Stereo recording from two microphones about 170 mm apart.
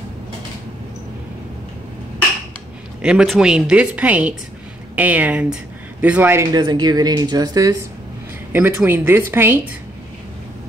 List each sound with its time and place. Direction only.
3.0 s a woman's voice: 5° right (ahead or behind)
6.5 s speech: 25° right (ahead or behind)
8.5 s a woman's voice: 10° right (ahead or behind)